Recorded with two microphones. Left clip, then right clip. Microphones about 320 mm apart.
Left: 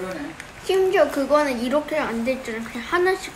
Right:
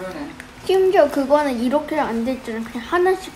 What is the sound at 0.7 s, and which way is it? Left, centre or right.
A woman's voice, centre.